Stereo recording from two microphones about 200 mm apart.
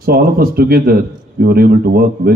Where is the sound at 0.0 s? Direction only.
50° right (ahead or behind).